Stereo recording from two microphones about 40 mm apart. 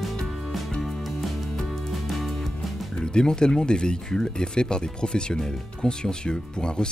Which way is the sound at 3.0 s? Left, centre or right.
Left.